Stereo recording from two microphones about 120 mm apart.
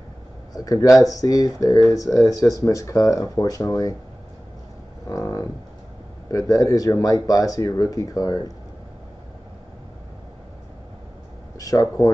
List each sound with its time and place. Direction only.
0.5 s speech: 30° left (ahead or behind)
5.1 s livestock: 25° left (ahead or behind)
6.5 s speech: 30° left (ahead or behind)
11.5 s speech: 30° left (ahead or behind)